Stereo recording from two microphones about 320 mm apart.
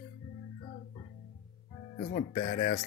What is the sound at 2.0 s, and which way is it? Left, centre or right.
Speech, left.